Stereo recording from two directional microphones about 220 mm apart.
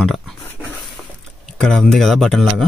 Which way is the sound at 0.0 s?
Centre (ahead or behind).